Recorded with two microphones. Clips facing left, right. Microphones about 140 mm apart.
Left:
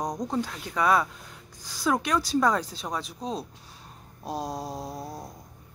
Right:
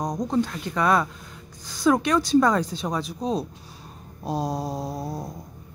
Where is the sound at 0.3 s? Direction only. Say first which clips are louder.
Right 5 dB; 5° left (ahead or behind).